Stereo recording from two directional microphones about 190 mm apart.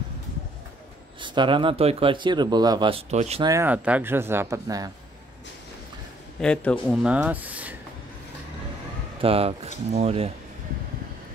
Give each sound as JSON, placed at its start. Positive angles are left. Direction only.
{"t": 1.2, "sound": "speech", "side_deg": -25}
{"t": 3.4, "sound": "speech", "side_deg": -10}
{"t": 6.4, "sound": "a man's voice", "side_deg": 5}
{"t": 7.0, "sound": "speech", "side_deg": -5}
{"t": 9.2, "sound": "speech", "side_deg": -30}